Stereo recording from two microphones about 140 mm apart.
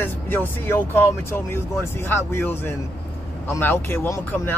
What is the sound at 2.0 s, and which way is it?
Speech, 15° left (ahead or behind).